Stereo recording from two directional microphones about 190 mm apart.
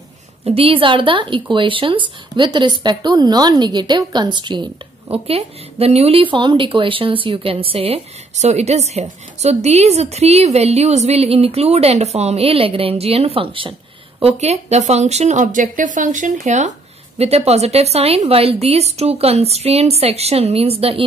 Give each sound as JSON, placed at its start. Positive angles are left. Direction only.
{"t": 0.5, "sound": "a woman's voice", "side_deg": -30}